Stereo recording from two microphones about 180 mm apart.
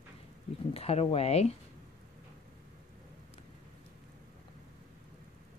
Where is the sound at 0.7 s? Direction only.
35° left (ahead or behind).